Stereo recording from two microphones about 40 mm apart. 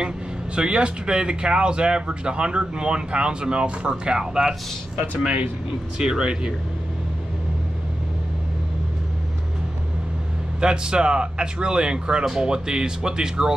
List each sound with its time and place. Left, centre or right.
0.6 s speech: right
10.6 s speech: right